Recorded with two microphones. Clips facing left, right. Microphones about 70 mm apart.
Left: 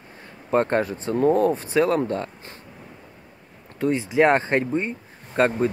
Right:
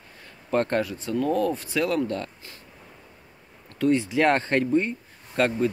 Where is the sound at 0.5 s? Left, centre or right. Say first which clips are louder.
Left 3 dB; left.